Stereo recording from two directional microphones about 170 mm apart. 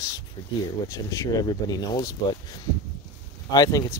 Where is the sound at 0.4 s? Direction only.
30° left (ahead or behind).